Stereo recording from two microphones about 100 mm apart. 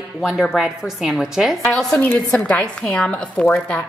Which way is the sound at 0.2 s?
Centre (ahead or behind).